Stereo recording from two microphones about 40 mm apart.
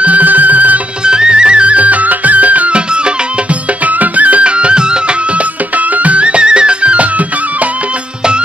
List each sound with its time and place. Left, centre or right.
0.0 s music: right
1.0 s music: right
3.8 s music: right
5.8 s music: right